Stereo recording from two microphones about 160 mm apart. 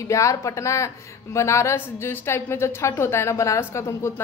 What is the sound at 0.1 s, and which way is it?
A woman's voice, 20° left (ahead or behind).